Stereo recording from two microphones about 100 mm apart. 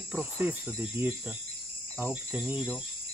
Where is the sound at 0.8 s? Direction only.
20° right (ahead or behind).